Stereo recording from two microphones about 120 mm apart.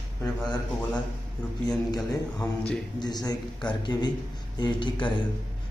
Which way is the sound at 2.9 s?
35° left (ahead or behind).